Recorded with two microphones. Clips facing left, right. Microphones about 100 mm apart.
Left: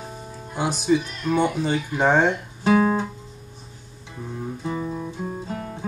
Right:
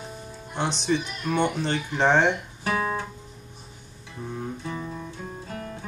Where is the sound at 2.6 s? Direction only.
25° left (ahead or behind).